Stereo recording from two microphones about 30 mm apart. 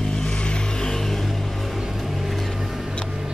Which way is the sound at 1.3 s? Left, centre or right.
Centre.